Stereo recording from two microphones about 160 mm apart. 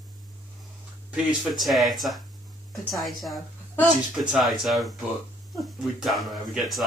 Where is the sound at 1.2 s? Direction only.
Centre (ahead or behind).